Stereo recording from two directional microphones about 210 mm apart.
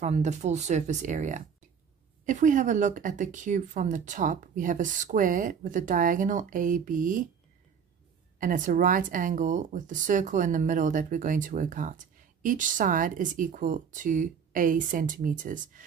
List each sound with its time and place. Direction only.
0.0 s speech: 35° right (ahead or behind)
8.4 s speech: 40° right (ahead or behind)